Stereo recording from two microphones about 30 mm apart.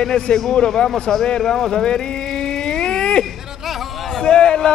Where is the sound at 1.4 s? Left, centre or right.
Centre.